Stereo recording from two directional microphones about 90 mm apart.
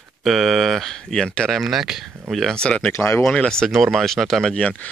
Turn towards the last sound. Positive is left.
turn(degrees=15)  # may be behind; listen again after turning